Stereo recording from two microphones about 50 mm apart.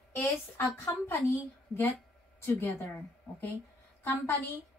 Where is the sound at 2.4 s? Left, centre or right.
Left.